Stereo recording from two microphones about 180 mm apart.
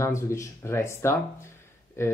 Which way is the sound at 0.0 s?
15° left (ahead or behind).